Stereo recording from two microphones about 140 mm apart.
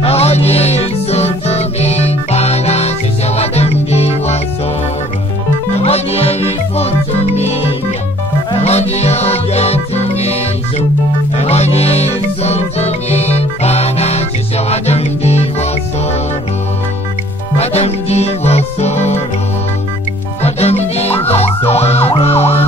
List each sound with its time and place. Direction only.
0.0 s music: 45° left (ahead or behind)
5.8 s music: 45° left (ahead or behind)
11.3 s music: 50° left (ahead or behind)
17.6 s music: 50° left (ahead or behind)
20.4 s music: 50° left (ahead or behind)
21.3 s emergency vehicle: 45° left (ahead or behind)